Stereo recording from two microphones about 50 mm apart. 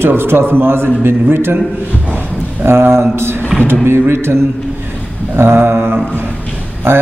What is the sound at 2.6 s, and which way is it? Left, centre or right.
A man's voice, right.